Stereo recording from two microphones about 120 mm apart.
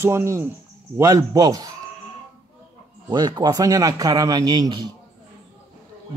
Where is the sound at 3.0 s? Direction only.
40° right (ahead or behind).